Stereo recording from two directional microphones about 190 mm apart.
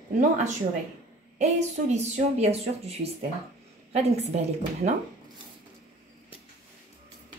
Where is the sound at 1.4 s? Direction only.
35° right (ahead or behind).